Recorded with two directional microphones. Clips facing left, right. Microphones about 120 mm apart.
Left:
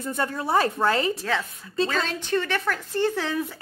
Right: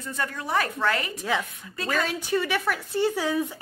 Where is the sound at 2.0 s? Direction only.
10° right (ahead or behind).